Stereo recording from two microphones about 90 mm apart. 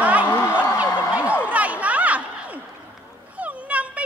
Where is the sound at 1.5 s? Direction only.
15° right (ahead or behind).